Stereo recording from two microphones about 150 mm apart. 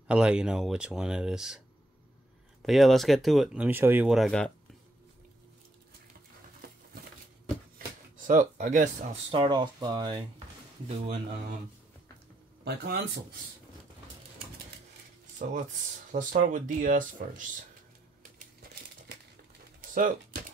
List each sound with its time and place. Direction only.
0.1 s speech: 5° right (ahead or behind)
2.6 s speech: centre (ahead or behind)
8.2 s speech: 55° right (ahead or behind)
9.3 s speech: 30° right (ahead or behind)
12.6 s speech: 90° right
15.4 s speech: 55° right (ahead or behind)